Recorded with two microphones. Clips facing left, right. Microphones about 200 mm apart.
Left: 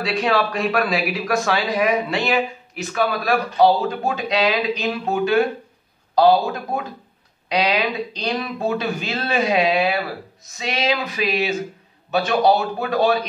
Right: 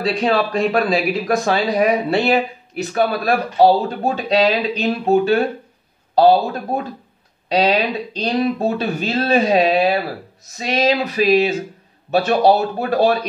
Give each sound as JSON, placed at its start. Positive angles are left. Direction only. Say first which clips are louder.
{"t": 0.2, "sound": "speech", "louder": "right 2 dB", "side_deg": -30}